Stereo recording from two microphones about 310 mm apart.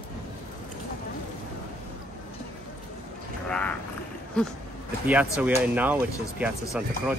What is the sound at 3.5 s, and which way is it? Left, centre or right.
Vehicle, centre.